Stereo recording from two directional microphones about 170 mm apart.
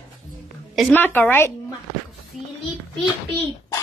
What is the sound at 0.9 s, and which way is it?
Speech, 10° left (ahead or behind).